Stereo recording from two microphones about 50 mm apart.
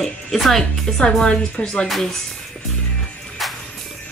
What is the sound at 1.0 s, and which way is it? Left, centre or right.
Speech, left.